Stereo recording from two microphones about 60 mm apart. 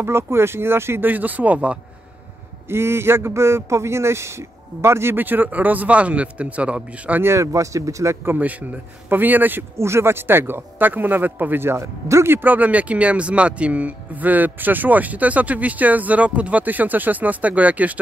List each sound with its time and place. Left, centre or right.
0.0 s speech: right
1.1 s speech: right
2.7 s speech: right
5.2 s speech: right
7.2 s speech: right
7.5 s speech: right
8.3 s speech: right
9.8 s speech: right
12.3 s speech: right